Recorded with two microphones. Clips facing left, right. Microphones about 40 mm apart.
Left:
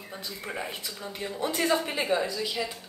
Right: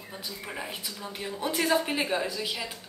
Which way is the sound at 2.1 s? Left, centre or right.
Centre.